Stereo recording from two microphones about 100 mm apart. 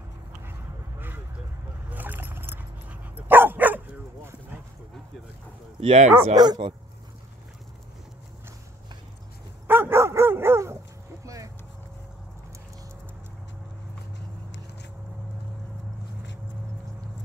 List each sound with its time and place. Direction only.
0.5 s quack: 20° right (ahead or behind)
1.9 s dog: 15° right (ahead or behind)
5.8 s speech: 85° right
6.3 s speech: 40° right (ahead or behind)
9.7 s dog: 20° right (ahead or behind)
11.2 s vehicle: 35° right (ahead or behind)